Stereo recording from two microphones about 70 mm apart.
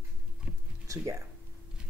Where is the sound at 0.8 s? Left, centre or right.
Right.